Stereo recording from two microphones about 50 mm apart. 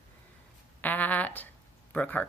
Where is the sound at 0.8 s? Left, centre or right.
Left.